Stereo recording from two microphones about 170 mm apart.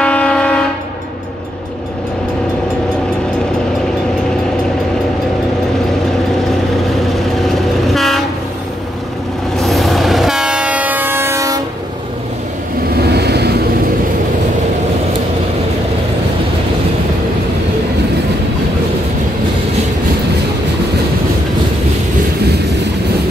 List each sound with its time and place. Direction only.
0.0 s train: 5° left (ahead or behind)
7.4 s train: centre (ahead or behind)
9.6 s train: centre (ahead or behind); by 11.6 s 20° right (ahead or behind)
13.1 s vehicle: 75° right (ahead or behind)